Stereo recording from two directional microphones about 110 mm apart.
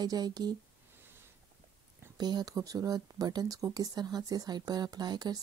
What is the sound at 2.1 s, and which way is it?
Speech, 40° right (ahead or behind).